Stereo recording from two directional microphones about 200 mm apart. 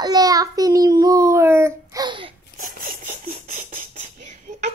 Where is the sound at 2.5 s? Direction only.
40° right (ahead or behind).